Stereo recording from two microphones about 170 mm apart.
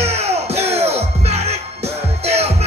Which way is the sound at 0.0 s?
40° right (ahead or behind).